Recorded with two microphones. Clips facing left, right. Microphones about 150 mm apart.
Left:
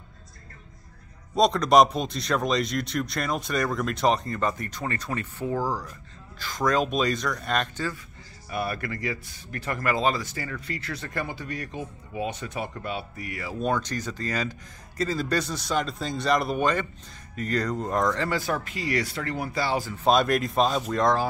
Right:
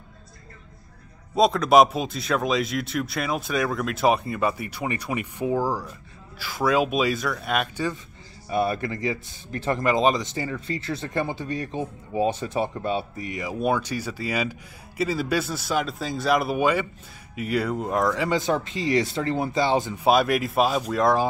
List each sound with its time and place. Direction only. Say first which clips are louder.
1.3 s a man's voice: right 2 dB; 5° right (ahead or behind)
8.5 s speech: right 6 dB; 25° right (ahead or behind)
20.1 s a man's voice: right 1 dB; 5° right (ahead or behind)